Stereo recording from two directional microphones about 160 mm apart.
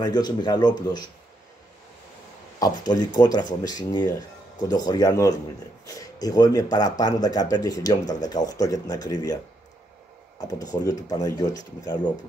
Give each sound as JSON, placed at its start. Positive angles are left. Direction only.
{"t": 0.0, "sound": "speech", "side_deg": 25}
{"t": 2.6, "sound": "speech", "side_deg": 25}
{"t": 10.4, "sound": "speech", "side_deg": 20}